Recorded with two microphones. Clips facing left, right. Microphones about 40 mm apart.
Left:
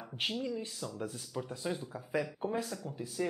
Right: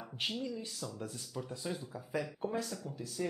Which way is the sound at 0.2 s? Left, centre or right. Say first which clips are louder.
Left 3 dB; centre.